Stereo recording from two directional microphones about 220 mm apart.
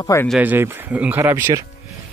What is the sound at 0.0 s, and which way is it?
Speech, 15° left (ahead or behind).